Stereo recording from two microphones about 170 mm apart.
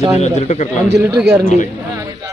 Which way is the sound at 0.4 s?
40° left (ahead or behind).